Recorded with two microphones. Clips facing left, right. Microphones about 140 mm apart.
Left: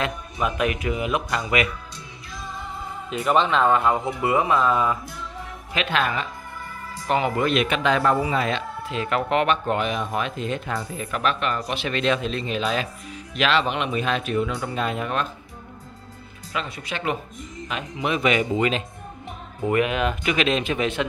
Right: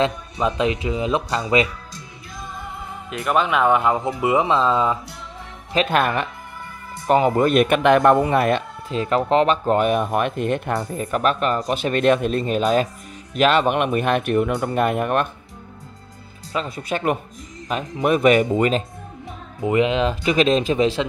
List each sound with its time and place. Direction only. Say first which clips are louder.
0.0 s speech: right 5 dB; 30° right (ahead or behind)
3.1 s speech: even; 5° right (ahead or behind); by 4.9 s 25° right (ahead or behind)
5.7 s speech: right 7 dB; 35° right (ahead or behind)
5.9 s speech: right 3 dB; 55° right (ahead or behind)
7.1 s speech: right 5 dB; 40° right (ahead or behind); by 8.6 s 55° right (ahead or behind)
8.9 s speech: right 5 dB; 30° right (ahead or behind); by 11.0 s 60° right (ahead or behind)
11.0 s speech: right 4 dB; 40° right (ahead or behind); by 15.2 s 55° right (ahead or behind)
16.5 s speech: right 5 dB; 40° right (ahead or behind)
19.6 s speech: right 3 dB; 20° right (ahead or behind)